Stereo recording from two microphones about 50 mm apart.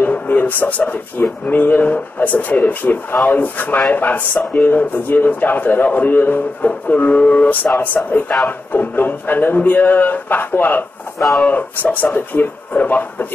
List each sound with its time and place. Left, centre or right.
0.0 s speech: left